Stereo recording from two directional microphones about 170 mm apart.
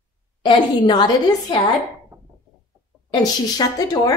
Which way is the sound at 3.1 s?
25° left (ahead or behind).